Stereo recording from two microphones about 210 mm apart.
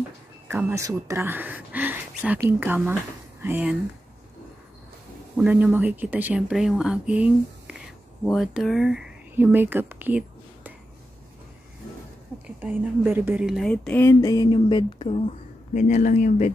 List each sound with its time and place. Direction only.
0.5 s speech: 10° right (ahead or behind)
5.4 s speech: 5° right (ahead or behind)
12.4 s a woman's voice: 10° right (ahead or behind); by 16.5 s 35° left (ahead or behind)